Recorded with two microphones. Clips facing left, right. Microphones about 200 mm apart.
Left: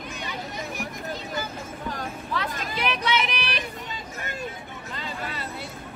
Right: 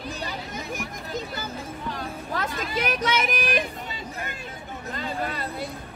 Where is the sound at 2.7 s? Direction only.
45° right (ahead or behind).